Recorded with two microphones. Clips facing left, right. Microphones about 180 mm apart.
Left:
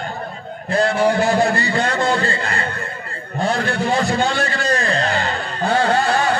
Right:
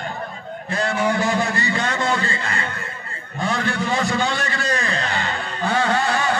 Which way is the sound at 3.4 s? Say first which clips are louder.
Left 3 dB; 35° left (ahead or behind).